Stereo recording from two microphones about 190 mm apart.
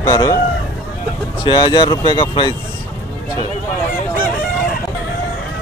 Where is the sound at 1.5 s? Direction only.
25° left (ahead or behind).